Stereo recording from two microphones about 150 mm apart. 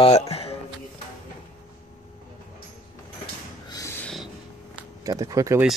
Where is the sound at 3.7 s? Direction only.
20° left (ahead or behind).